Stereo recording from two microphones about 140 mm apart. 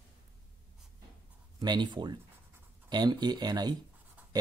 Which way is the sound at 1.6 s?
30° right (ahead or behind).